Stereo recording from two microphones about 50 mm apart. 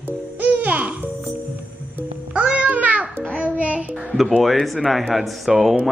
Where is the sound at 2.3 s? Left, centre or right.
Right.